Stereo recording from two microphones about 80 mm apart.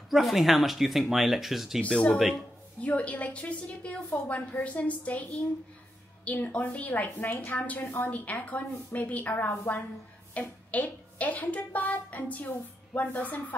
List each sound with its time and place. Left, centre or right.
0.1 s speech: centre
1.8 s a woman's voice: centre